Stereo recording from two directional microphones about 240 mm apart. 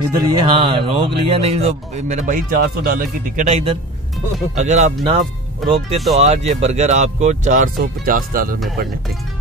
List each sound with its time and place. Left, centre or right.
0.1 s speech: centre
5.6 s speech: centre
6.1 s speech: right